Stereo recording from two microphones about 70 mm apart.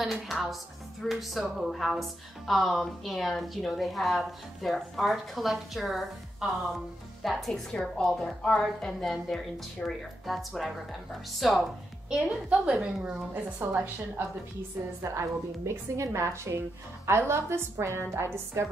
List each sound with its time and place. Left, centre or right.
0.0 s a woman's voice: centre
12.1 s a woman's voice: centre
13.3 s a woman's voice: right
15.0 s a woman's voice: right